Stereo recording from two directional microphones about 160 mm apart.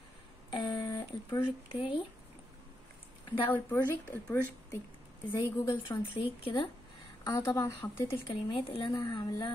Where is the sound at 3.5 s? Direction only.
10° left (ahead or behind).